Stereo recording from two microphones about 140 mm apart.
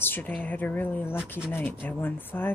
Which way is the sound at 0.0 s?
10° left (ahead or behind).